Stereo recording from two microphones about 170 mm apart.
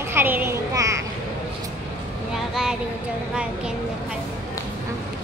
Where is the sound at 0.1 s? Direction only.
10° right (ahead or behind).